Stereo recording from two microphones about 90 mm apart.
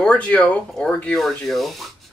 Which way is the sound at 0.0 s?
15° left (ahead or behind).